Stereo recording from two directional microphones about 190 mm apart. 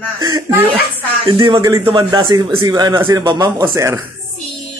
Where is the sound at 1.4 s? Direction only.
25° right (ahead or behind).